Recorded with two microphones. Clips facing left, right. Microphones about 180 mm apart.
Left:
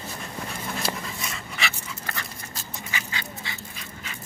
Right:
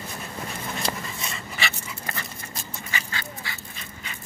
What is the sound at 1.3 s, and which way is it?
Dog, centre (ahead or behind).